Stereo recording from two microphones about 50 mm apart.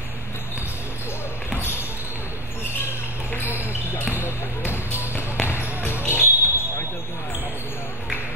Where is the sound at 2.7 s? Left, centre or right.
Left.